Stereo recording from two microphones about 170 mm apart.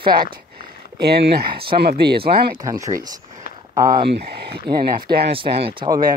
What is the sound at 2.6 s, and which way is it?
Speech, 20° right (ahead or behind).